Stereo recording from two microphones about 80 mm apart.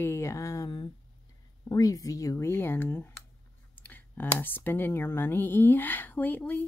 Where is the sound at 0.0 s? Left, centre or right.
Left.